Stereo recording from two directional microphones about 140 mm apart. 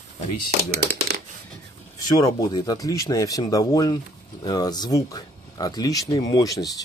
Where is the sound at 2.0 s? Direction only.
25° left (ahead or behind).